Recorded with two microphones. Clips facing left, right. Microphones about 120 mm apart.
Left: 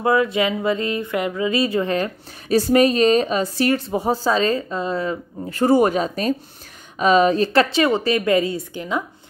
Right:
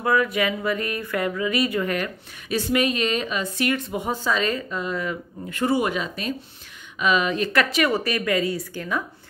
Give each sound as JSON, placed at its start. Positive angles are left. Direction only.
{"t": 0.0, "sound": "a woman's voice", "side_deg": 25}